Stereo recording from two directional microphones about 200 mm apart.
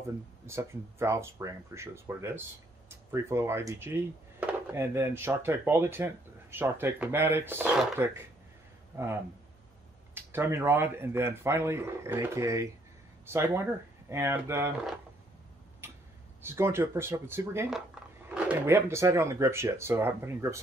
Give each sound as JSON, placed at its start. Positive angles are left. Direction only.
{"t": 0.0, "sound": "speech", "side_deg": -15}
{"t": 16.4, "sound": "speech", "side_deg": -10}